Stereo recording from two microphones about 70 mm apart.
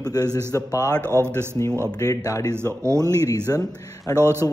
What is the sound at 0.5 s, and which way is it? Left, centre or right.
Speech, left.